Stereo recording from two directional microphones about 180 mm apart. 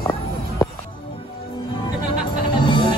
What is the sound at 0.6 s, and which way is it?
Music, 20° left (ahead or behind).